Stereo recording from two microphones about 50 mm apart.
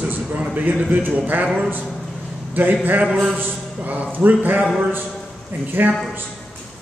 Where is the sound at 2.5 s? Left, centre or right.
Right.